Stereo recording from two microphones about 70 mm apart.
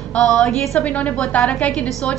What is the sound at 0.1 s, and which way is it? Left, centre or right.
Speech, centre.